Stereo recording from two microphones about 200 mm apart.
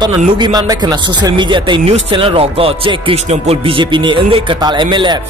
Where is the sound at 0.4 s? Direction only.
20° right (ahead or behind).